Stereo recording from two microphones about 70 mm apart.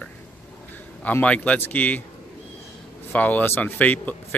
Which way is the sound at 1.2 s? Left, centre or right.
Centre.